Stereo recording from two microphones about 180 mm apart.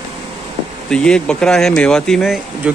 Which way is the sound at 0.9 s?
5° left (ahead or behind).